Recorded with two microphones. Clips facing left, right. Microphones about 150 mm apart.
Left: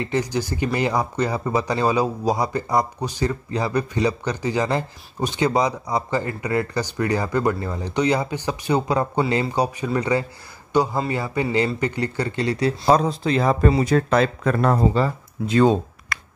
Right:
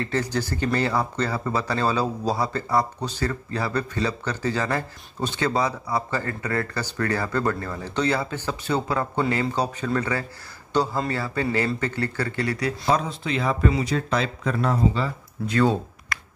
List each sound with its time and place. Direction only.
0.0 s speech: 15° left (ahead or behind)
12.8 s speech: 35° left (ahead or behind)
15.4 s speech: 20° left (ahead or behind)